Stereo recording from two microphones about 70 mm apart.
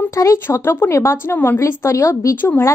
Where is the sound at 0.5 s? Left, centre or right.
Left.